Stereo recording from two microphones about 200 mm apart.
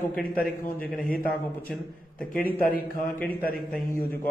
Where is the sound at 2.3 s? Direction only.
45° left (ahead or behind).